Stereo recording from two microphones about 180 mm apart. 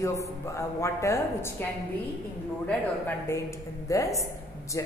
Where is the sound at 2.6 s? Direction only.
10° left (ahead or behind).